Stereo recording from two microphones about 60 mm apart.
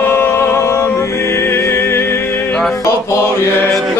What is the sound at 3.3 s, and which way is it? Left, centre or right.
Mantra, left.